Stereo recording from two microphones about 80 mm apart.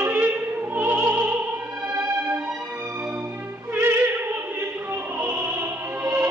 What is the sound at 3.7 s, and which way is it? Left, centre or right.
Opera, right.